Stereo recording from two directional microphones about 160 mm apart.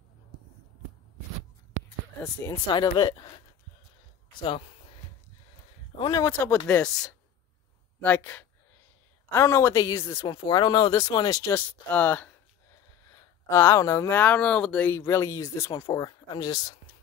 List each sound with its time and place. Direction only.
2.6 s speech: 30° left (ahead or behind)
5.9 s speech: 25° left (ahead or behind)
6.7 s speech: 5° left (ahead or behind); by 16.7 s 25° left (ahead or behind)